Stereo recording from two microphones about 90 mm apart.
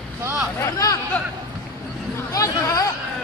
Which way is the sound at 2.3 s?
40° left (ahead or behind).